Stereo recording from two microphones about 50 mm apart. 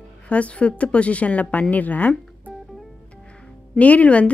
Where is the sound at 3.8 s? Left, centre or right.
Left.